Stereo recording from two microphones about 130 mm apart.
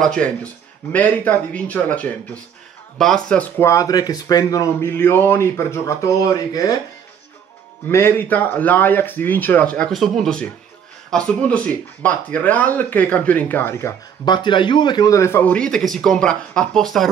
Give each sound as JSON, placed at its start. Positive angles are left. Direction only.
{"t": 0.0, "sound": "a man's voice", "side_deg": 5}
{"t": 7.9, "sound": "a man's voice", "side_deg": 20}
{"t": 14.2, "sound": "a man's voice", "side_deg": 35}